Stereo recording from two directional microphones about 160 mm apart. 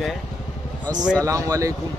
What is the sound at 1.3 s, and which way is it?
Speech, 20° right (ahead or behind).